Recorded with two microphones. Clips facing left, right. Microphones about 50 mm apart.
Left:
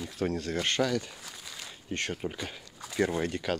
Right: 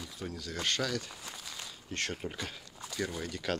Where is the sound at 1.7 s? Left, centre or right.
Left.